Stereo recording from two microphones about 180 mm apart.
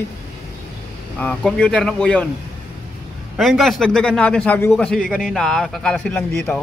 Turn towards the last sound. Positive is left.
turn(degrees=10)  # may be behind; listen again after turning